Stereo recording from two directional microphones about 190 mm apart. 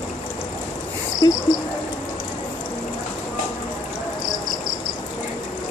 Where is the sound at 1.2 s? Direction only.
20° left (ahead or behind).